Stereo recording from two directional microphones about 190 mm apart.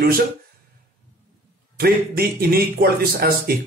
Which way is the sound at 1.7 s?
55° right (ahead or behind).